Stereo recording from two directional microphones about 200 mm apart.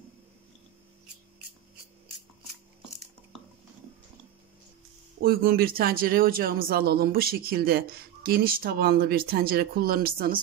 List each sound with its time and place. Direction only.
5.2 s speech: 45° right (ahead or behind)